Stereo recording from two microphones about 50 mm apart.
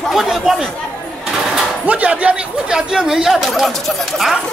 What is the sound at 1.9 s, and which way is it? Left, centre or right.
Speech, right.